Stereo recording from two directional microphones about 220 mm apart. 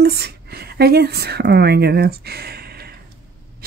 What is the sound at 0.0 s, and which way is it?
Speech, 45° right (ahead or behind).